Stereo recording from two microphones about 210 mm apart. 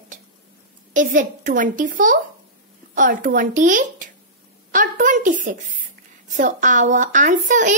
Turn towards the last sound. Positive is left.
turn(degrees=-35)  # may be behind; listen again after turning